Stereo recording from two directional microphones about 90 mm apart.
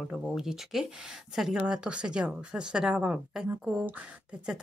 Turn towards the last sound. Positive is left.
turn(degrees=-15)  # may be behind; listen again after turning